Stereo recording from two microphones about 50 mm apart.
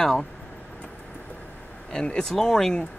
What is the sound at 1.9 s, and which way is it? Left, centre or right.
Speech, centre.